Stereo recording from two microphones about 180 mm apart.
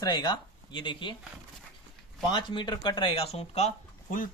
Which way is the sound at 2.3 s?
25° left (ahead or behind).